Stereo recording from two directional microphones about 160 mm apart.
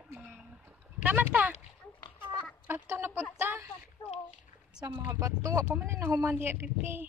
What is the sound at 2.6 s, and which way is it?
Speech, 15° right (ahead or behind).